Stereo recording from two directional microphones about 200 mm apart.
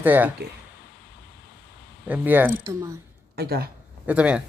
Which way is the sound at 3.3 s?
50° right (ahead or behind).